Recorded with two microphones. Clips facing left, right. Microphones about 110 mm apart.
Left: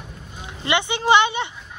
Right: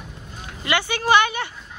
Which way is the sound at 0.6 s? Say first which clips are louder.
Left 1 dB; 20° left (ahead or behind).